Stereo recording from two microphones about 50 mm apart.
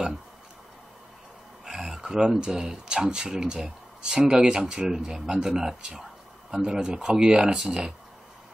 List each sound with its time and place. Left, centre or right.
1.6 s speech: centre